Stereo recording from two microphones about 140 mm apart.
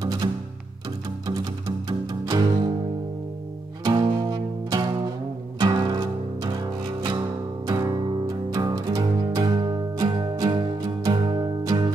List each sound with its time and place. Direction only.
0.0 s music: 30° right (ahead or behind)
3.8 s music: 30° right (ahead or behind)
7.6 s music: 25° right (ahead or behind)